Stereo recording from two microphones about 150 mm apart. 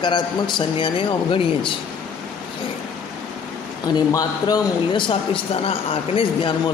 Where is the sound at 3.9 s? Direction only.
25° left (ahead or behind).